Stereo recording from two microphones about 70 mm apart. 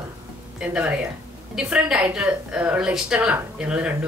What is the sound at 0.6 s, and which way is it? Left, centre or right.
A woman's voice, centre.